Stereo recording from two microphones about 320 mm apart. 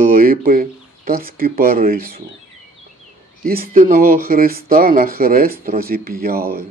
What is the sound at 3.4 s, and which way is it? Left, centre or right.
Speech, right.